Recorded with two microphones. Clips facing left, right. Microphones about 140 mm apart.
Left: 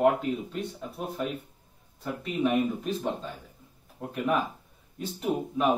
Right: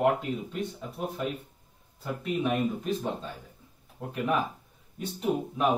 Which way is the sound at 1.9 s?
Centre (ahead or behind).